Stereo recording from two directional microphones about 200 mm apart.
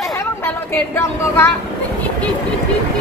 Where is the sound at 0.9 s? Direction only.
10° left (ahead or behind).